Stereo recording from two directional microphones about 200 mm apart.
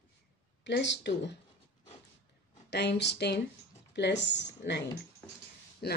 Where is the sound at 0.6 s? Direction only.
60° left (ahead or behind).